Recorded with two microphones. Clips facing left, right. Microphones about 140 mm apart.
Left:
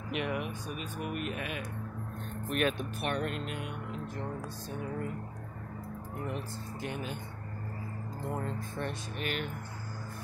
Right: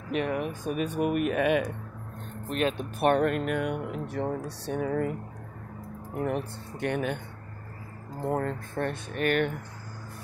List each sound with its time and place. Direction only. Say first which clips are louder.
0.1 s speech: right 6 dB; 40° right (ahead or behind)
0.8 s speech: right 11 dB; 60° right (ahead or behind)
1.3 s speech: right 13 dB; 75° right (ahead or behind)
2.4 s speech: right 3 dB; 30° right (ahead or behind)
3.0 s speech: right 14 dB; 50° right (ahead or behind); by 5.1 s 85° right
6.2 s speech: right 9 dB; 60° right (ahead or behind)
8.2 s speech: right 8 dB; 50° right (ahead or behind)